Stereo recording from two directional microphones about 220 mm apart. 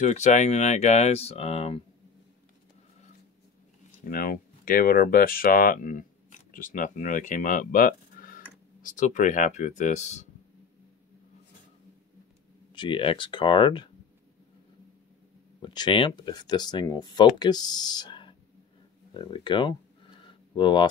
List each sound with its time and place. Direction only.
0.0 s speech: 30° left (ahead or behind)
4.0 s speech: 40° left (ahead or behind)
12.7 s speech: 20° left (ahead or behind)
15.6 s speech: 20° left (ahead or behind)
20.2 s a sound: 20° left (ahead or behind)